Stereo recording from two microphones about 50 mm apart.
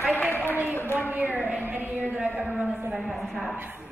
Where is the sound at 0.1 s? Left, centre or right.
Left.